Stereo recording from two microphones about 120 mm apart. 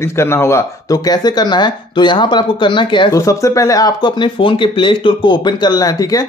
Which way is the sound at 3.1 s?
25° left (ahead or behind).